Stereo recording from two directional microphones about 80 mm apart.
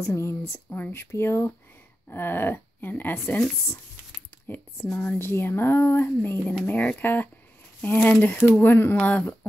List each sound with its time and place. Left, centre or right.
0.0 s speech: left
0.7 s speech: left
1.1 s speech: left
4.9 s speech: left